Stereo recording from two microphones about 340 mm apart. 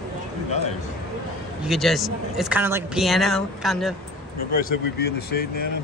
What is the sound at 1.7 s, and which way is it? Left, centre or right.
Speech, centre.